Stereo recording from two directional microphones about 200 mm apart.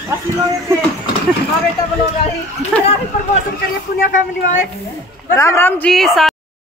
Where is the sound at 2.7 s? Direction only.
5° left (ahead or behind).